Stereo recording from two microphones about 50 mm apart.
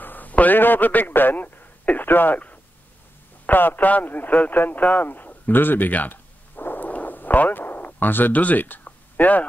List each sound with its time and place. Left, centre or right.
0.0 s a man's voice: left